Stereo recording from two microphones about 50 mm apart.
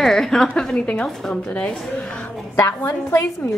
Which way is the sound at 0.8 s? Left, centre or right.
Left.